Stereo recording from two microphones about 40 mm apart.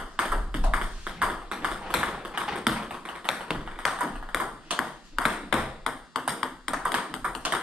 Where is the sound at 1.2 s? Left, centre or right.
Right.